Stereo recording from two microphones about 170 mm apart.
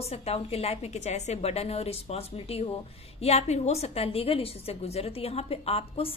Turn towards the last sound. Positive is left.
turn(degrees=35)  # may be behind; listen again after turning